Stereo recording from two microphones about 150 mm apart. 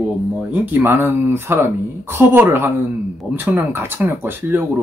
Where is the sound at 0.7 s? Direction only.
15° right (ahead or behind).